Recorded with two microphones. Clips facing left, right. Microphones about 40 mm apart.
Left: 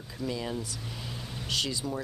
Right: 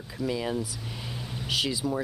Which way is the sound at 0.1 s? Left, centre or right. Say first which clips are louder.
Right 4 dB; centre.